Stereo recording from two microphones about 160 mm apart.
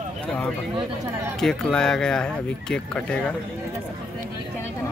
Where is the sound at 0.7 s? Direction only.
20° right (ahead or behind).